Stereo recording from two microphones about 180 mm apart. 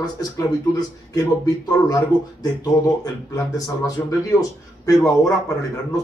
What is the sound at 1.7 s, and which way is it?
Speech, 20° left (ahead or behind).